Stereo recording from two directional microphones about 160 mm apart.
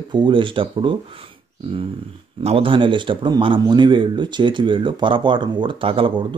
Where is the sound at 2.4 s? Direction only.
35° right (ahead or behind).